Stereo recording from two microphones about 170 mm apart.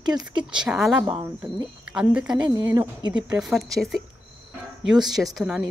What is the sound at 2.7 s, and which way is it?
Speech, 20° right (ahead or behind).